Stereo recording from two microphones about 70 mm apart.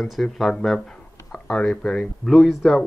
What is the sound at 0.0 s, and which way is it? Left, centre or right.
Speech, centre.